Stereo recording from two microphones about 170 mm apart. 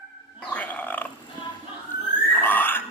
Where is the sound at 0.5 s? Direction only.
10° left (ahead or behind).